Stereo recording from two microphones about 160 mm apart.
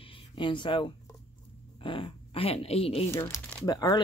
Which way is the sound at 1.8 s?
30° left (ahead or behind).